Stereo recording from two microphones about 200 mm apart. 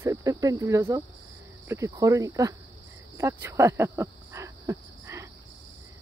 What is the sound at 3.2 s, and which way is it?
Cricket, 10° right (ahead or behind).